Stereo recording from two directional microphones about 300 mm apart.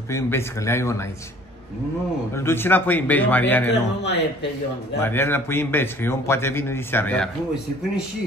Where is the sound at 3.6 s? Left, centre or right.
Left.